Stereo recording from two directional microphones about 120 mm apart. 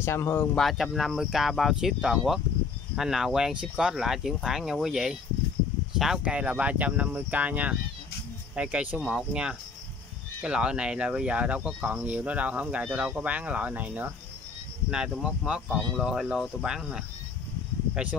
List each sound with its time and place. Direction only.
0.0 s speech: 20° left (ahead or behind)
0.6 s speech: centre (ahead or behind)